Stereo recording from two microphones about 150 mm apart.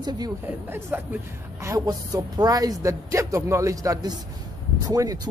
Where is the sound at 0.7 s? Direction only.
15° right (ahead or behind).